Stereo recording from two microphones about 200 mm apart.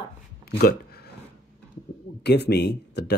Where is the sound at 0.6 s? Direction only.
55° left (ahead or behind).